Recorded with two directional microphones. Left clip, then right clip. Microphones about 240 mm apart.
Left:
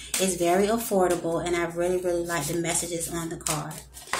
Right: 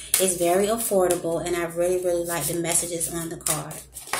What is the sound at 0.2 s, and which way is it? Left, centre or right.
Speech, centre.